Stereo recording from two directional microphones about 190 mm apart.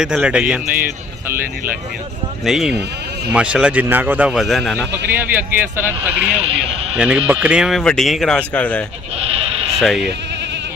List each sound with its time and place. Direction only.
0.0 s speech: 5° right (ahead or behind)
2.4 s speech: centre (ahead or behind)
4.9 s a man's voice: 10° right (ahead or behind); by 8.8 s 5° left (ahead or behind)
9.2 s sheep: 30° right (ahead or behind)
9.8 s speech: centre (ahead or behind)